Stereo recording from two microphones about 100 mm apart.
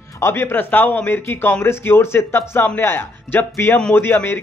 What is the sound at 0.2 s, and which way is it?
A man's voice, 25° left (ahead or behind).